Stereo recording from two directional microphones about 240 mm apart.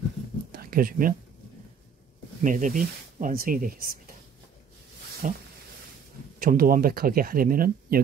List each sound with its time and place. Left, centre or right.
0.5 s a sound: right
2.4 s speech: right
5.2 s speech: right
6.4 s speech: right